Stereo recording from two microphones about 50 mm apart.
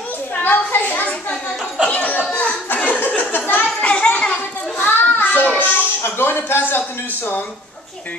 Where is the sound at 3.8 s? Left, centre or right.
Left.